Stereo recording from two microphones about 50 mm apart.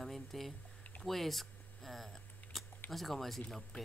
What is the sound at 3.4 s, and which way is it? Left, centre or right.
Speech, centre.